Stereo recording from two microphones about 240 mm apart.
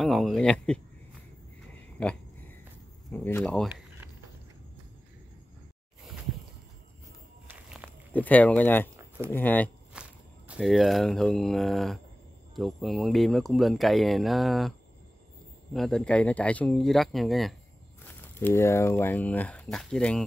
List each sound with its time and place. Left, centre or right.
0.0 s speech: centre
2.0 s a sound: centre
3.1 s speech: centre
7.4 s walk: centre
8.1 s speech: centre
8.9 s a sound: centre
9.3 s speech: centre
9.9 s walk: centre
10.5 s speech: centre
15.7 s speech: centre